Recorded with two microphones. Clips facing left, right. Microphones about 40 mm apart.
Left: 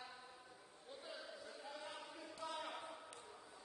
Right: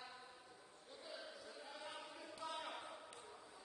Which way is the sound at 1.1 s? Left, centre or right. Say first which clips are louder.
Right 2 dB; centre.